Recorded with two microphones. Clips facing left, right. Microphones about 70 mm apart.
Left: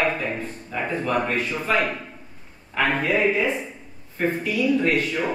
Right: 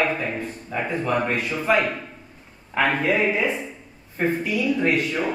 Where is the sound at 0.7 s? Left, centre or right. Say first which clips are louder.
Even; centre.